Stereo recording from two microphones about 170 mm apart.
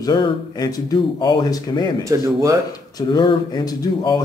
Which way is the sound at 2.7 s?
25° left (ahead or behind).